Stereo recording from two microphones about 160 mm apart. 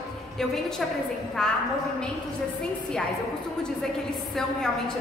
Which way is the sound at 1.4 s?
5° left (ahead or behind).